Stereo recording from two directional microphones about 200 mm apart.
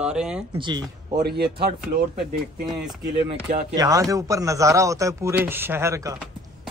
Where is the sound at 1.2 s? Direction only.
55° right (ahead or behind).